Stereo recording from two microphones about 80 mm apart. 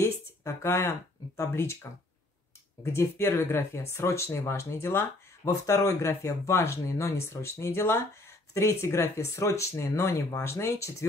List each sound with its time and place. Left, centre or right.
0.0 s speech: left
5.5 s speech: left